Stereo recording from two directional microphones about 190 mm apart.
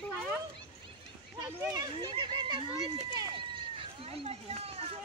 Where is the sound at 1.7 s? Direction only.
20° right (ahead or behind).